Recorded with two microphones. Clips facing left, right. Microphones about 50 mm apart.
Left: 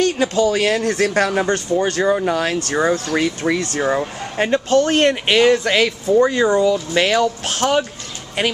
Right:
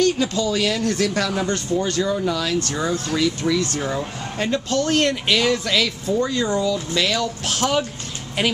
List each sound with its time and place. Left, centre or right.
0.0 s speech: left
4.4 s speech: left
7.4 s speech: left